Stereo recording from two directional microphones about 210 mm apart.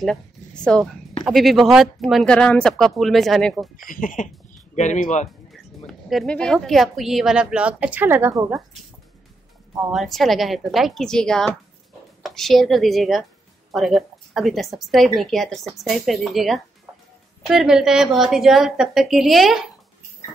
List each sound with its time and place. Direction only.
0.7 s speech: 5° left (ahead or behind)
3.9 s speech: 40° left (ahead or behind)
5.5 s speech: centre (ahead or behind)
9.8 s speech: centre (ahead or behind)